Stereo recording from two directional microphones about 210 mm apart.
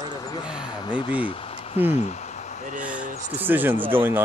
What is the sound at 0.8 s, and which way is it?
Speech, 25° left (ahead or behind).